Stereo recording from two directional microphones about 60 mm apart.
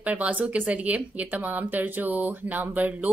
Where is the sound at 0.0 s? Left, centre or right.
Right.